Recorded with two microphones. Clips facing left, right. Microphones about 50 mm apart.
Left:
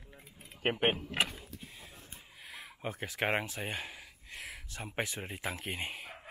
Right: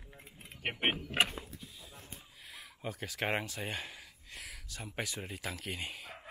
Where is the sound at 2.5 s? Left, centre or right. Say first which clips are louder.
Left 2 dB; left.